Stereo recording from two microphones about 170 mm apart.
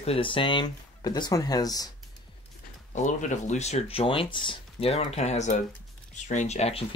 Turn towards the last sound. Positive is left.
turn(degrees=40)  # may be behind; listen again after turning